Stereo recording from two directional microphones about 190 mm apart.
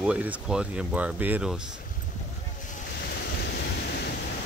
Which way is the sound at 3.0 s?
60° left (ahead or behind).